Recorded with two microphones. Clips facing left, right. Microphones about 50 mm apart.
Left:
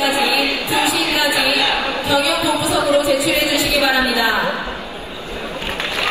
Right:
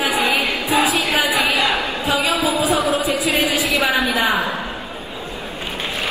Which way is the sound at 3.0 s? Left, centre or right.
Right.